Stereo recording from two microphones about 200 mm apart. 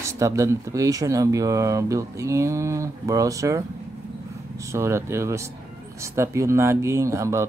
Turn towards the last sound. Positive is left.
turn(degrees=-15)  # may be behind; listen again after turning